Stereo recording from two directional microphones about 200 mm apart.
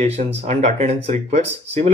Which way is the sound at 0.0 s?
30° right (ahead or behind).